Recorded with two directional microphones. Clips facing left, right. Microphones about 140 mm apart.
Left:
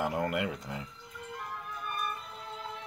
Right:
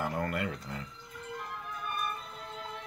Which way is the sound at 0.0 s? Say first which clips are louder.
Left 2 dB; 15° left (ahead or behind).